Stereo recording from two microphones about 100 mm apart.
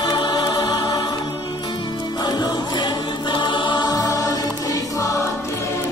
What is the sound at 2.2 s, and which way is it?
Music, 40° left (ahead or behind).